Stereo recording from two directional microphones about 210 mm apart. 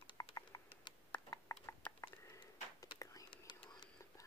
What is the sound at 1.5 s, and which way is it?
Whispering, 5° left (ahead or behind).